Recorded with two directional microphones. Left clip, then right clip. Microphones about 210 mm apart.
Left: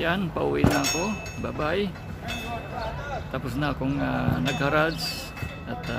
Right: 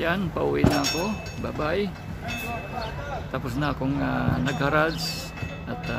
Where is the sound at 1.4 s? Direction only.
10° left (ahead or behind).